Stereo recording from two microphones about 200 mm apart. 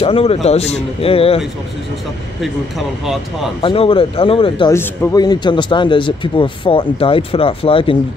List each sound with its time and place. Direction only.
0.0 s a man's voice: 30° left (ahead or behind)
3.6 s a man's voice: 25° left (ahead or behind)
4.7 s a man's voice: 15° left (ahead or behind)